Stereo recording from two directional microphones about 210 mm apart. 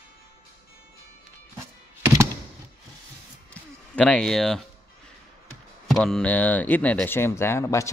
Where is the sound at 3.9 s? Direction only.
5° left (ahead or behind).